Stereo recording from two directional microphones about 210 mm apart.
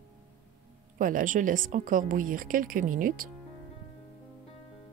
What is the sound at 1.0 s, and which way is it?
Speech, 40° right (ahead or behind).